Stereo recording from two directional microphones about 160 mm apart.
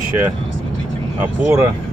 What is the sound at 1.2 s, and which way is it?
Speech, 15° right (ahead or behind).